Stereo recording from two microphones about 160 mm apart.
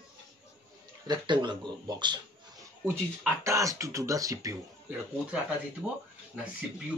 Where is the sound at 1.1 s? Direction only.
30° right (ahead or behind).